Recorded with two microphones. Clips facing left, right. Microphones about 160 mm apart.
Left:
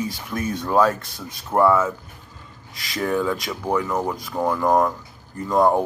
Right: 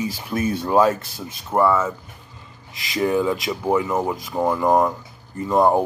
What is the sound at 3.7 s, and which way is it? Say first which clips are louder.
Speech: right 2 dB; 15° right (ahead or behind).